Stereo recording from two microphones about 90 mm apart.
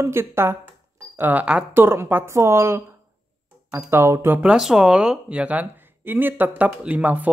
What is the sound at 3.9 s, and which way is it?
Speech, 30° right (ahead or behind).